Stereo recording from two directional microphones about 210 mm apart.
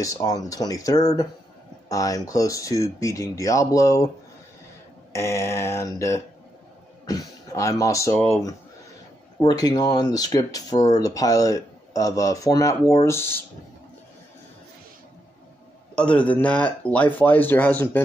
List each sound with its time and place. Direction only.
0.0 s speech: 15° left (ahead or behind)
5.1 s speech: 15° left (ahead or behind)
9.4 s speech: 20° left (ahead or behind)
15.9 s speech: 5° left (ahead or behind)